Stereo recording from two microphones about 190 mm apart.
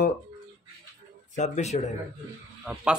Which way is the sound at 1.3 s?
35° left (ahead or behind).